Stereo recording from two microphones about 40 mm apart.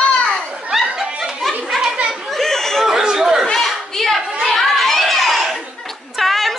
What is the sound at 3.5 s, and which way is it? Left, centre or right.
Children playing, centre.